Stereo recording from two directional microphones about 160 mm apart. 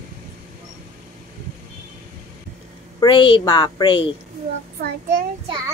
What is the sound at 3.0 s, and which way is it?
A woman's voice, 30° left (ahead or behind).